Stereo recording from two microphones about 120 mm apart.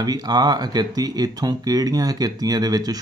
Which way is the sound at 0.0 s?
35° right (ahead or behind).